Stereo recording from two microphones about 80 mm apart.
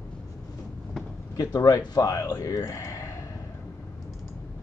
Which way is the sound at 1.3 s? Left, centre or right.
Left.